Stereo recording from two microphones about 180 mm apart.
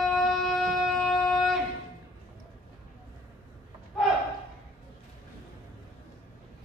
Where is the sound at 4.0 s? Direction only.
Centre (ahead or behind).